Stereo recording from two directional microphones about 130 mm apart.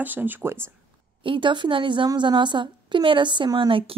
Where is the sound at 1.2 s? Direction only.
40° right (ahead or behind).